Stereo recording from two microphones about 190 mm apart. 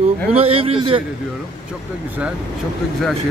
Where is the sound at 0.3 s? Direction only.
30° right (ahead or behind).